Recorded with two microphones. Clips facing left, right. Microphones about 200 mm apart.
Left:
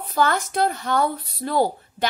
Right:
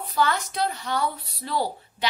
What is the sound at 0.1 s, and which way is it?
A woman's voice, 50° left (ahead or behind).